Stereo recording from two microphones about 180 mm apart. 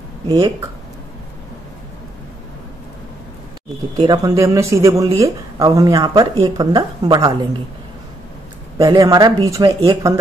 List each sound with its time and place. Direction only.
0.3 s speech: 20° right (ahead or behind)
3.9 s speech: 25° right (ahead or behind)
8.7 s speech: 20° right (ahead or behind)